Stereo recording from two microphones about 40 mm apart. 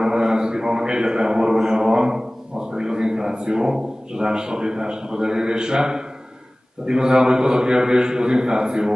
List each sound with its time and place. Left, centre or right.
0.0 s a man's voice: centre